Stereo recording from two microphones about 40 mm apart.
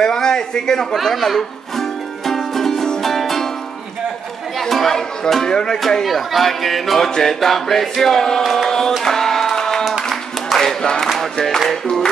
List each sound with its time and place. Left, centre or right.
0.0 s a sound: centre
0.9 s music: centre
4.6 s speech: centre
6.0 s music: centre
8.0 s speech: centre
8.6 s music: centre
10.5 s a sound: centre
11.1 s music: centre